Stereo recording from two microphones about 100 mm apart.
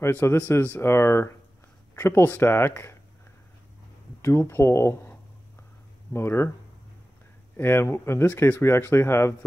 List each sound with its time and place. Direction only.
0.1 s speech: 20° left (ahead or behind)
4.2 s speech: 25° left (ahead or behind)
7.5 s speech: 25° left (ahead or behind)